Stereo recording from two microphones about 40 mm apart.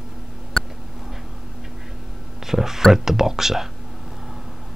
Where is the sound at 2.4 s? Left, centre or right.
Centre.